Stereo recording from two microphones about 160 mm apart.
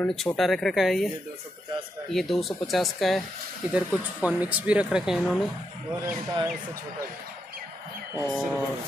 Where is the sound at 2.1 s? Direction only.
Centre (ahead or behind).